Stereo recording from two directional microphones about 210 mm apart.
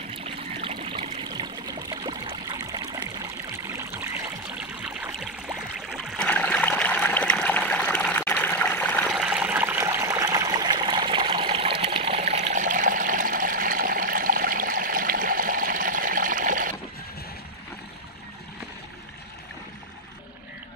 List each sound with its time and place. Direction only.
0.1 s trickle: 25° right (ahead or behind); by 9.1 s 5° left (ahead or behind)
9.1 s water: 5° right (ahead or behind); by 16.7 s 40° right (ahead or behind)